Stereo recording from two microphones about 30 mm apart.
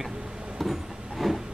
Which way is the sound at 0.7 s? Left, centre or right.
Centre.